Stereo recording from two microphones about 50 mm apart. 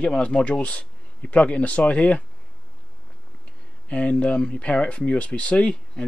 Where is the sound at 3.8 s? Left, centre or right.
Left.